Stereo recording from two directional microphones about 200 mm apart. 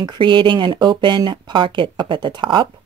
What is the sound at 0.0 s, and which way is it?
Speech, 25° right (ahead or behind).